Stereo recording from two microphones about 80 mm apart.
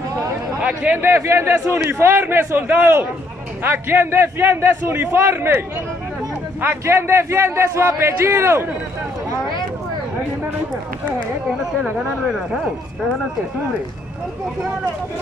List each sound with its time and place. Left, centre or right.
0.6 s a man's voice: centre
6.6 s a man's voice: right